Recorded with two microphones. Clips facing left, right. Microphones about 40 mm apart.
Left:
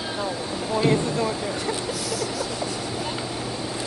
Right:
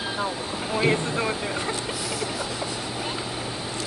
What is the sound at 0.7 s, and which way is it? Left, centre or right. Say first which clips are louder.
Vehicle: left 2 dB; right.